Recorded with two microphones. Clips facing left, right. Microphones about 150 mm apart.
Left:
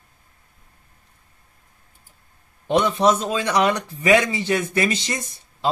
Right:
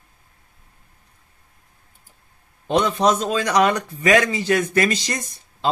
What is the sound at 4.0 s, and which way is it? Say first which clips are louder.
Speech: even; 25° left (ahead or behind).